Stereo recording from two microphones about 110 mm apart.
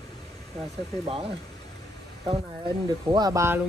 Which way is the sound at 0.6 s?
Centre (ahead or behind).